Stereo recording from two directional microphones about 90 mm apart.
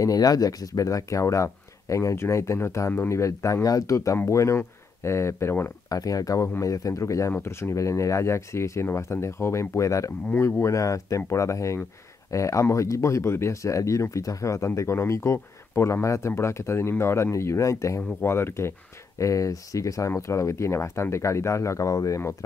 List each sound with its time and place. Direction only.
0.0 s speech: 45° left (ahead or behind)
2.9 s speech: 25° left (ahead or behind)
3.2 s speech: 35° left (ahead or behind)
5.9 s speech: 40° left (ahead or behind)
19.1 s speech: 35° left (ahead or behind)